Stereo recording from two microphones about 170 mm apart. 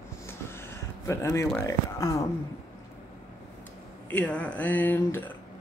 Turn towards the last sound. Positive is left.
turn(degrees=10)  # may be behind; listen again after turning